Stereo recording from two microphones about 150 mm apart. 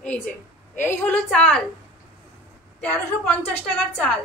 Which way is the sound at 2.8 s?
15° left (ahead or behind).